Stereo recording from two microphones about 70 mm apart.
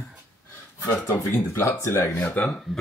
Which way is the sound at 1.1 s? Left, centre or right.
Left.